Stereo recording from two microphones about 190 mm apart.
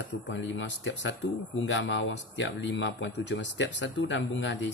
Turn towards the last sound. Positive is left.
turn(degrees=75)  # may be behind; listen again after turning